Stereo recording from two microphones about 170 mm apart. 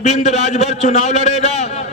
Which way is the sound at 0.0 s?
40° left (ahead or behind).